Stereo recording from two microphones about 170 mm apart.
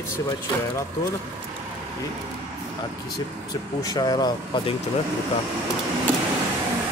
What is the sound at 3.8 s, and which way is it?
Speech, 25° left (ahead or behind).